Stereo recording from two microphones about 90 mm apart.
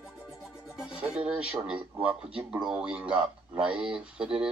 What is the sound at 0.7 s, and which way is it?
Speech, 10° right (ahead or behind).